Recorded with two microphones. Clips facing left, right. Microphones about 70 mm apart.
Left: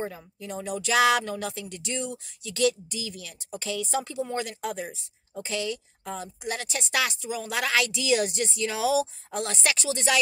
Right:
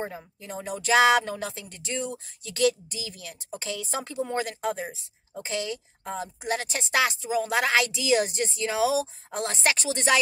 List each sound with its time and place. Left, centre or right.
0.0 s a woman's voice: right